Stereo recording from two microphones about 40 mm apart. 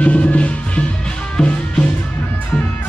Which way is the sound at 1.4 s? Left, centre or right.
Centre.